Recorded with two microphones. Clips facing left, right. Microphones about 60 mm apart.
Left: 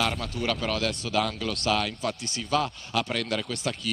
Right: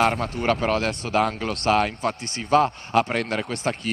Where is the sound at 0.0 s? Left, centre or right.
Right.